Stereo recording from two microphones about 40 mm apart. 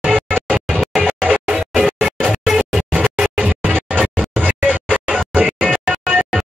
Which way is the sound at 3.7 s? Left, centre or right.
Right.